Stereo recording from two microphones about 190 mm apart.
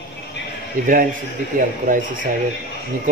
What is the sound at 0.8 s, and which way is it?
Speech, 45° right (ahead or behind).